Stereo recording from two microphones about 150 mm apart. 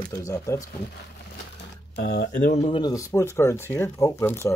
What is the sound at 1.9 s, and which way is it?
Speech, 90° left.